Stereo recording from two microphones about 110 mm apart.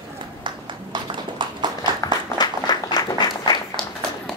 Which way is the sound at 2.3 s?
40° left (ahead or behind).